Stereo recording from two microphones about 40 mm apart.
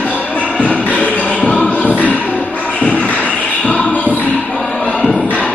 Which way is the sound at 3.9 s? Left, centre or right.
Left.